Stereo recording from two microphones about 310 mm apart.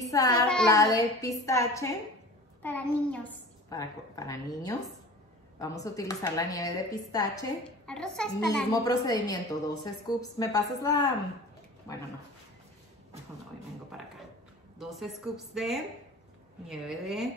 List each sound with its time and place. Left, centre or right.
0.1 s child singing: centre
0.6 s speech: centre
14.8 s a woman's voice: centre